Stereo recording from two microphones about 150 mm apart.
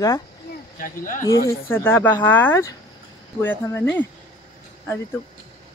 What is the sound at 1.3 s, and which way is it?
Speech, 20° left (ahead or behind).